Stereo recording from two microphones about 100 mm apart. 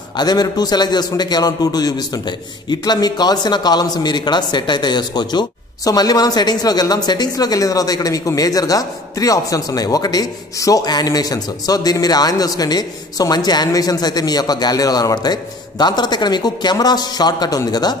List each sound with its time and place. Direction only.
0.1 s a man's voice: 45° left (ahead or behind)